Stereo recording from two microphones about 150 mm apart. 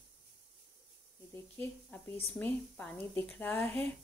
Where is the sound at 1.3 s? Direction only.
15° left (ahead or behind).